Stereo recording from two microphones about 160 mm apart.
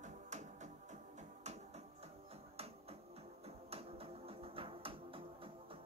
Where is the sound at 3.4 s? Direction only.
40° right (ahead or behind).